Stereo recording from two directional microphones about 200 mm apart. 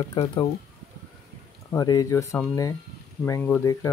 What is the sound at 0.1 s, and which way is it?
Speech, 25° left (ahead or behind).